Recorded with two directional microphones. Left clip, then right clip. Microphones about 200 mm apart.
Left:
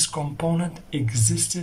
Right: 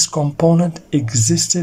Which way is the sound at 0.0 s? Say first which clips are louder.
Right 10 dB; 35° right (ahead or behind).